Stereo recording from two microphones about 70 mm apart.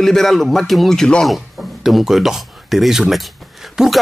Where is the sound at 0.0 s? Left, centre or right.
Centre.